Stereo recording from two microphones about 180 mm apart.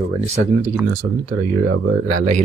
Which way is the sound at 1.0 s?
45° right (ahead or behind).